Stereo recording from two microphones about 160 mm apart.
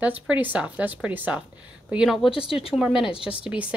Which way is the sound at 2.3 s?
35° left (ahead or behind).